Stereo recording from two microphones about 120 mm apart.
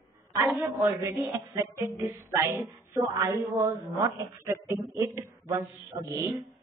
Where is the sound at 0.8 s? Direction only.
25° right (ahead or behind).